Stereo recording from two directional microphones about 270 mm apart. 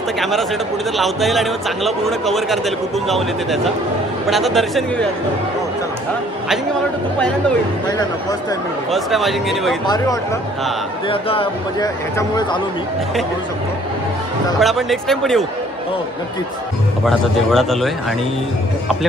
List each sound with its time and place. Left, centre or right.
0.2 s a man's voice: centre
8.9 s a man's voice: centre
9.8 s speech: centre
14.6 s a man's voice: centre
17.0 s a man's voice: centre